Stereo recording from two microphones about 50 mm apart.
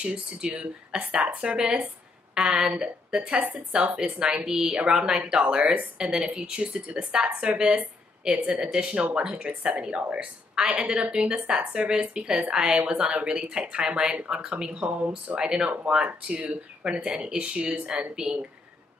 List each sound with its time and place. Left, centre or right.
0.0 s a woman's voice: right
14.9 s speech: right
15.3 s a woman's voice: centre